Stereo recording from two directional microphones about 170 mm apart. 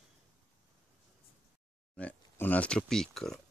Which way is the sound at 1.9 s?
10° left (ahead or behind).